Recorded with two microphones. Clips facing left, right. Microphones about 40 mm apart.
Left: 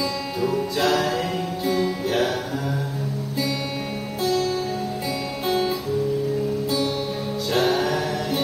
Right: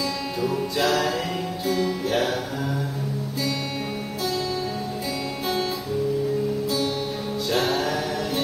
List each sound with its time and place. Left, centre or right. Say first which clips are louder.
0.4 s music: left 2 dB; centre
4.2 s music: left 5 dB; centre
7.5 s music: left 3 dB; centre